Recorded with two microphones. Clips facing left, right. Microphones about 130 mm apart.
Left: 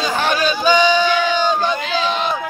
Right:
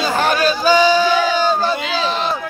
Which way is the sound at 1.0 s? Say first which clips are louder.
Right 1 dB; 5° right (ahead or behind).